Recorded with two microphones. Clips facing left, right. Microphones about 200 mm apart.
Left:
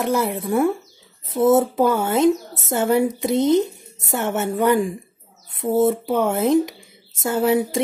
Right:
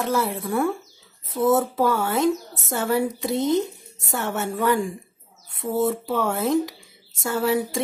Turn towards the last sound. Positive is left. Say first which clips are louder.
# left 4 dB
turn(degrees=20)  # may be behind; listen again after turning